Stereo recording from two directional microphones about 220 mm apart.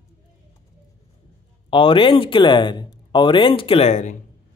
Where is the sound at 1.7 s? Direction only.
25° left (ahead or behind).